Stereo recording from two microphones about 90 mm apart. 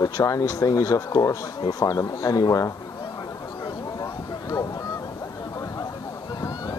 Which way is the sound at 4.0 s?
40° left (ahead or behind).